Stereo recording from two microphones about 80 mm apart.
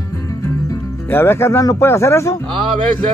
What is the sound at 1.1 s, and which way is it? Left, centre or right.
Speech, left.